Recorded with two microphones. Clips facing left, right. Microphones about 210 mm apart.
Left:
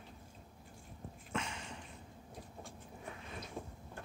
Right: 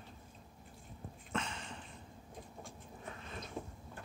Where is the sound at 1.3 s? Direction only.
10° left (ahead or behind).